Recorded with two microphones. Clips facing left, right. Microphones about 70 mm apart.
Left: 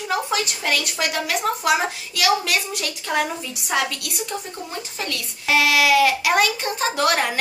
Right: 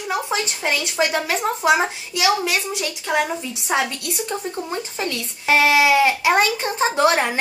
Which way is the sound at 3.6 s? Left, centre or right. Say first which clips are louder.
Right 1 dB; right.